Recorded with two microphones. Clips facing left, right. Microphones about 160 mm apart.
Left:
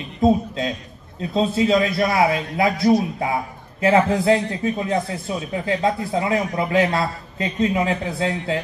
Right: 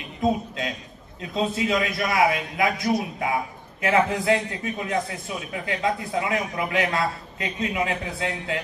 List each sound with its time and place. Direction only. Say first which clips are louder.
0.2 s a man's voice: left 6 dB; 30° left (ahead or behind)